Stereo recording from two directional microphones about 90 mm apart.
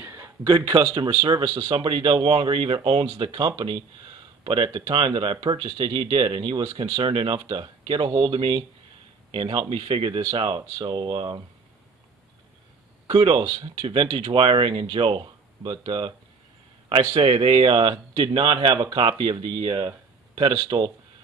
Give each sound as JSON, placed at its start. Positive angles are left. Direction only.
{"t": 0.0, "sound": "a sound", "side_deg": -30}
{"t": 0.5, "sound": "speech", "side_deg": -55}
{"t": 13.0, "sound": "speech", "side_deg": -65}
{"t": 17.1, "sound": "speech", "side_deg": -75}